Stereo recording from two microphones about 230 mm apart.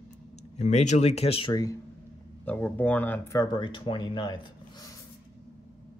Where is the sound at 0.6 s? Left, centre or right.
Left.